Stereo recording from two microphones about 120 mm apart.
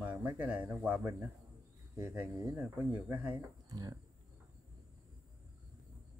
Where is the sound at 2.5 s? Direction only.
10° right (ahead or behind).